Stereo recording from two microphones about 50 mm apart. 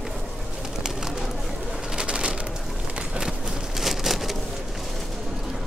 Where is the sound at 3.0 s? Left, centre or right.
Centre.